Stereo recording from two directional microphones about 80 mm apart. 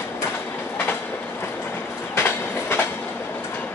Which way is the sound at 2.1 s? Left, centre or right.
Left.